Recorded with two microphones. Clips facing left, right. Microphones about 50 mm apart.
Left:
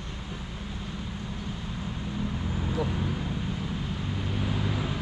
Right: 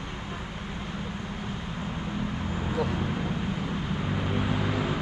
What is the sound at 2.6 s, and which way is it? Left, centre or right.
Vehicle, right.